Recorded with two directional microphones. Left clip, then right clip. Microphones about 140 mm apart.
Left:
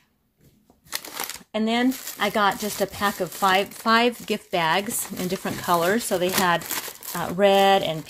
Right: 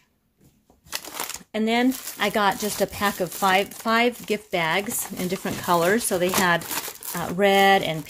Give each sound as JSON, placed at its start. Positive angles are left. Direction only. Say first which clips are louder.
{"t": 0.9, "sound": "a sound", "louder": "even", "side_deg": -5}
{"t": 1.5, "sound": "speech", "louder": "right 1 dB", "side_deg": -15}
{"t": 3.8, "sound": "speech", "louder": "left 2 dB", "side_deg": 0}
{"t": 5.6, "sound": "speech", "louder": "right 1 dB", "side_deg": -20}